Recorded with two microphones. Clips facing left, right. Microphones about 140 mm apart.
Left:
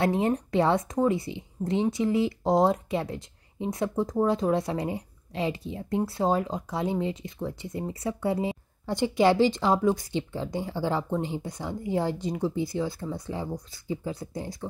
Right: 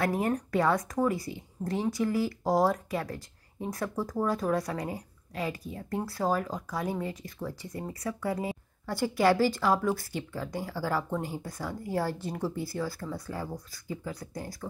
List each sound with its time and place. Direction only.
0.0 s speech: 25° left (ahead or behind)